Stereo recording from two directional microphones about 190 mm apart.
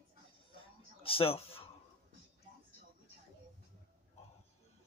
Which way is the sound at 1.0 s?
30° left (ahead or behind).